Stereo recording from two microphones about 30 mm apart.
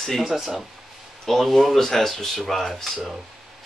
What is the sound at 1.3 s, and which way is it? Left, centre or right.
Speech, centre.